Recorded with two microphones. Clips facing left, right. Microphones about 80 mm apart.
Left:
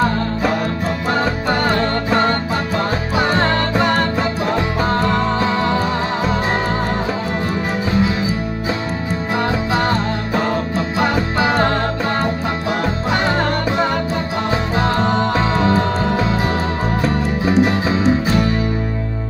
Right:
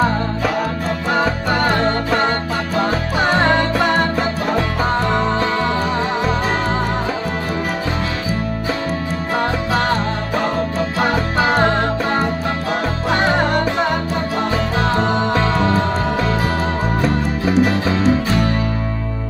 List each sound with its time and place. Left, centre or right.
3.7 s music: centre
15.0 s music: centre
15.3 s music: centre
17.0 s music: centre
17.6 s music: centre